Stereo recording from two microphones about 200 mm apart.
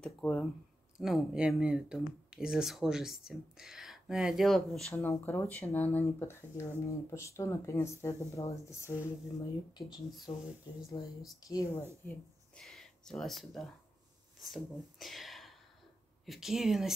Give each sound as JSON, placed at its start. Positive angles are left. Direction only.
{"t": 0.0, "sound": "speech", "side_deg": 5}
{"t": 4.9, "sound": "speech", "side_deg": 10}
{"t": 12.1, "sound": "speech", "side_deg": 5}